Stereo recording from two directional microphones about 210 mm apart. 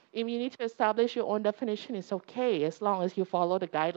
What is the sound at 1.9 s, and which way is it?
Speech, 25° right (ahead or behind).